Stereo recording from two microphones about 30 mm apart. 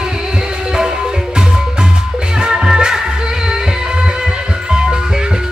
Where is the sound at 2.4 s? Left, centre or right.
Right.